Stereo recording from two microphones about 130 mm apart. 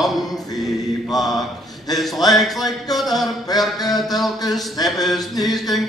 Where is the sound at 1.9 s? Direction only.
30° left (ahead or behind).